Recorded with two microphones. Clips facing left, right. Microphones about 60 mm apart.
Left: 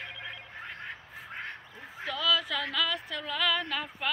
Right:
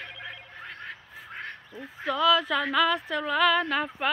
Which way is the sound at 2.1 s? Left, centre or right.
Right.